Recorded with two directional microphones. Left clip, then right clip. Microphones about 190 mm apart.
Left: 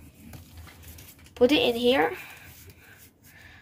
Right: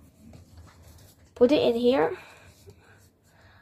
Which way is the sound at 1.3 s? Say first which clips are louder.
Right 1 dB; 50° right (ahead or behind).